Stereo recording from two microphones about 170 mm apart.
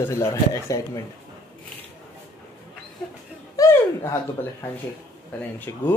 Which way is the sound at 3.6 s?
20° left (ahead or behind).